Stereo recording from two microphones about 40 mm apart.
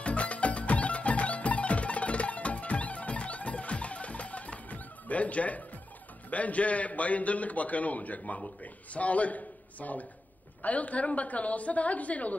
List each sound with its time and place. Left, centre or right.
0.0 s music: left
6.3 s a man's voice: left